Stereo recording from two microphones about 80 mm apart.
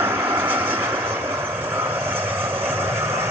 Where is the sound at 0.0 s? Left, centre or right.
Right.